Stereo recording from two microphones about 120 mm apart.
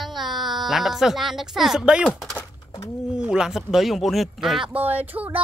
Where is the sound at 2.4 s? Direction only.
25° left (ahead or behind).